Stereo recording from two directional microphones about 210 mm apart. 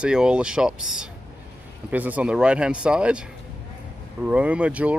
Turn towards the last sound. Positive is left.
turn(degrees=-5)  # may be behind; listen again after turning